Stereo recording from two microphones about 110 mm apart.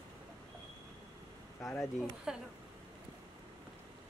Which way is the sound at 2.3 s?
5° right (ahead or behind).